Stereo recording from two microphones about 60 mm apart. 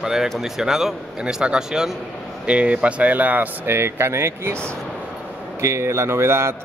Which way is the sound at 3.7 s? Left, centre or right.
Right.